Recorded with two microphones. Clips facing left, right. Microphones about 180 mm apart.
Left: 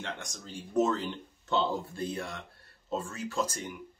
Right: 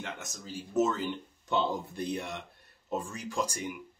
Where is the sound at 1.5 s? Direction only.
15° right (ahead or behind).